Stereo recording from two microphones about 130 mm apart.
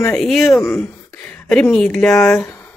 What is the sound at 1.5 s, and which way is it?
Speech, 5° left (ahead or behind).